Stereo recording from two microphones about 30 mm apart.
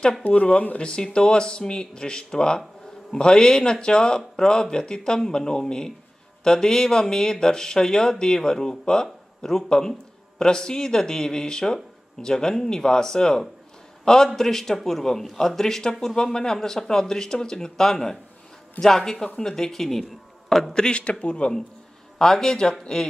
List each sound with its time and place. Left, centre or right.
0.2 s speech: left
0.7 s speech: left; by 20.1 s centre
20.7 s speech: left
21.0 s speech: left
22.2 s speech: centre